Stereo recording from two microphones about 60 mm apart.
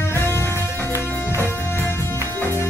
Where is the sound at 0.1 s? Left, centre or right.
Left.